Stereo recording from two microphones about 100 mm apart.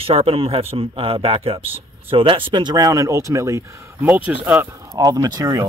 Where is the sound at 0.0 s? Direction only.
75° right (ahead or behind).